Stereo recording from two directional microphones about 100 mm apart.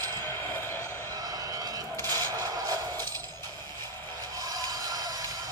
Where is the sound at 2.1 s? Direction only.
40° right (ahead or behind).